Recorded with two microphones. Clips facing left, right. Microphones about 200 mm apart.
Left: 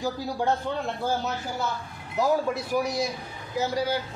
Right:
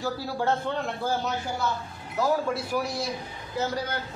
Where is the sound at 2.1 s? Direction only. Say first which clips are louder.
Left 1 dB; 15° left (ahead or behind).